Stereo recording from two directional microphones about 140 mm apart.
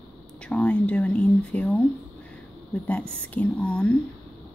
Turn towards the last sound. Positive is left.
turn(degrees=10)  # may be behind; listen again after turning